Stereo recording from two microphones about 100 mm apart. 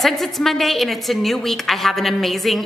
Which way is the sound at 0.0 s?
Centre (ahead or behind).